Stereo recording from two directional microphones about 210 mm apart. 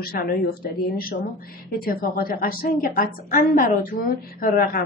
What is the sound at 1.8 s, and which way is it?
A woman's voice, 45° left (ahead or behind).